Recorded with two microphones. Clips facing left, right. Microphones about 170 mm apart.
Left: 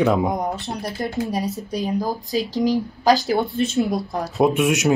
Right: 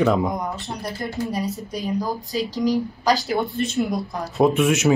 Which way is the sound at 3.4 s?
Centre (ahead or behind).